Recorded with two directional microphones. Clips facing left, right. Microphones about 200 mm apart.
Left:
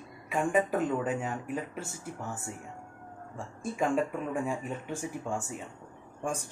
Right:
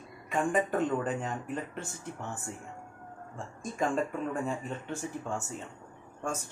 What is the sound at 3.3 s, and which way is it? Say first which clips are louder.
Speech: left 2 dB; 5° left (ahead or behind).